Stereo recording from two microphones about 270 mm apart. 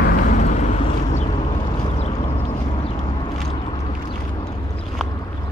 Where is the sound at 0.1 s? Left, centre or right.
Left.